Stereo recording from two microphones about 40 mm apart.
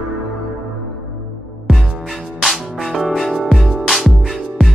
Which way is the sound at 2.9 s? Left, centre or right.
Centre.